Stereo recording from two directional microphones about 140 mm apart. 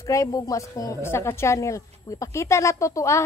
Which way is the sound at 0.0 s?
25° left (ahead or behind).